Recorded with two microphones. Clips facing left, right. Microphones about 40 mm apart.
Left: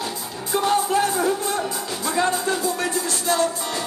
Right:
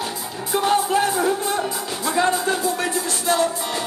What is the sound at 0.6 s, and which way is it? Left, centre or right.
Music, right.